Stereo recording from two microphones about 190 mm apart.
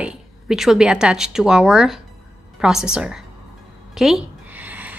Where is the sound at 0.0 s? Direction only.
Centre (ahead or behind).